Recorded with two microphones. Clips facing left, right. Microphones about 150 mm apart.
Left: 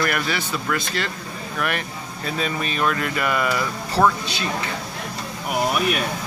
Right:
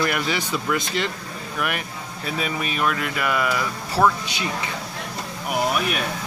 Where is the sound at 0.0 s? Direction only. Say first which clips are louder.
Even; 20° right (ahead or behind).